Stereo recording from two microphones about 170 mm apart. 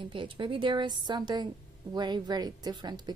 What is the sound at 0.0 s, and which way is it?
Speech, 30° right (ahead or behind).